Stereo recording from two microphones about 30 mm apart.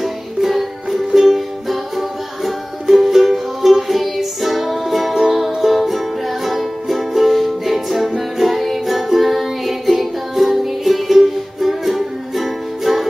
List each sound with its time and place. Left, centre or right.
0.0 s music: centre